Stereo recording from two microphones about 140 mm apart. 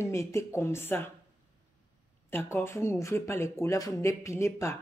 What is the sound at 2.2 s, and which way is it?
Speech, 15° left (ahead or behind).